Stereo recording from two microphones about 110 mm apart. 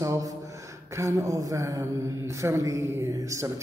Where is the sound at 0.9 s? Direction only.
30° right (ahead or behind).